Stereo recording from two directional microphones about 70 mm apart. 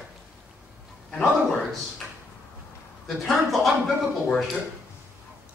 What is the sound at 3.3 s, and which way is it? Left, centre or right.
Speech, centre.